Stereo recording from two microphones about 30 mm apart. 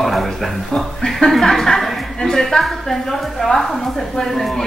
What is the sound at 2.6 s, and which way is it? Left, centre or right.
Speech, centre.